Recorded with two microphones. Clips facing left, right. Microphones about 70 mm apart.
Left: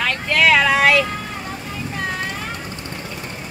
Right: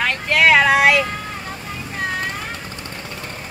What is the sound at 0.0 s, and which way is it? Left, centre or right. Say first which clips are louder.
Vehicle: right 1 dB; right.